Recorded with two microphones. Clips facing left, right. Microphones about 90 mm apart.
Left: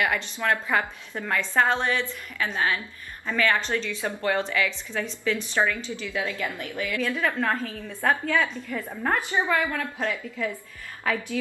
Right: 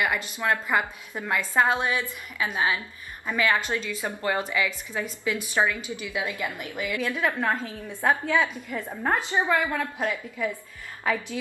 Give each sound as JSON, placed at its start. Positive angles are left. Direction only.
{"t": 0.0, "sound": "a woman's voice", "side_deg": -15}